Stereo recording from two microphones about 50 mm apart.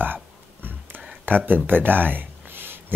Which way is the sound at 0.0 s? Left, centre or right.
Right.